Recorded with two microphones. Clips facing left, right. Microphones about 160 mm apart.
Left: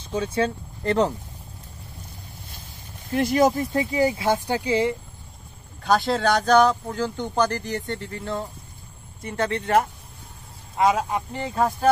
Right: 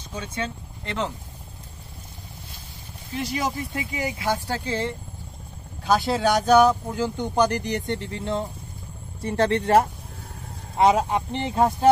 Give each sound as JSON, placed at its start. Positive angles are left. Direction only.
{"t": 0.1, "sound": "speech", "side_deg": 30}
{"t": 3.1, "sound": "speech", "side_deg": 50}
{"t": 5.9, "sound": "speech", "side_deg": -5}
{"t": 9.2, "sound": "speech", "side_deg": -30}